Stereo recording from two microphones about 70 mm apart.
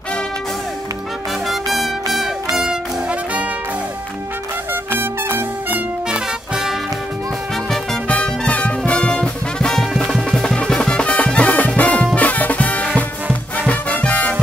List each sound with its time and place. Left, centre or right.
1.5 s music: centre
4.9 s music: right
6.0 s music: centre
8.1 s music: centre